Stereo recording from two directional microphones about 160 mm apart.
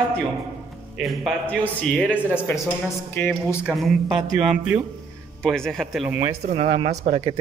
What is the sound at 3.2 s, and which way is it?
Speech, 10° left (ahead or behind).